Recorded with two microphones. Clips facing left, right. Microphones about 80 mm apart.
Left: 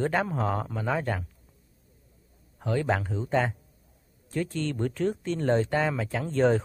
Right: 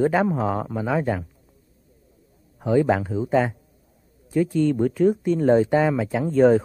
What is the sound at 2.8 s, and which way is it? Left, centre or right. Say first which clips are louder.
Speech: right 6 dB; centre.